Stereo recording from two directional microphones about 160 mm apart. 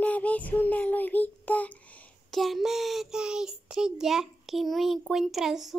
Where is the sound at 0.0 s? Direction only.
10° left (ahead or behind).